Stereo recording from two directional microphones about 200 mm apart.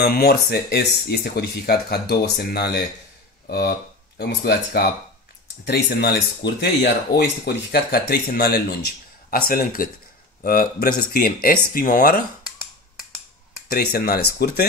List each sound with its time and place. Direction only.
0.0 s speech: 50° left (ahead or behind)
13.7 s speech: 50° left (ahead or behind)